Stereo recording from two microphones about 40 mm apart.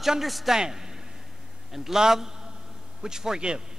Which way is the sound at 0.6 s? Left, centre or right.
Centre.